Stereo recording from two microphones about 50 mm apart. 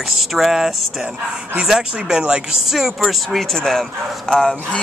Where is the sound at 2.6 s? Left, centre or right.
Centre.